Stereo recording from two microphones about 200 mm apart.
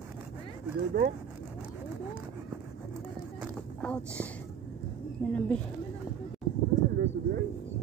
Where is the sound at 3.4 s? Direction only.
5° left (ahead or behind).